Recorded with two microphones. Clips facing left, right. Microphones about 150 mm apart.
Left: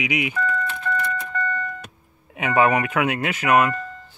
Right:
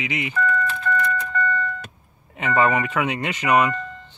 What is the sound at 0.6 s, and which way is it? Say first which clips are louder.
Vehicle: right 2 dB; 15° left (ahead or behind).